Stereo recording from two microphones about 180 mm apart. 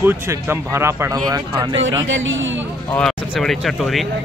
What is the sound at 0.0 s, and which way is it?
Speech, 10° right (ahead or behind).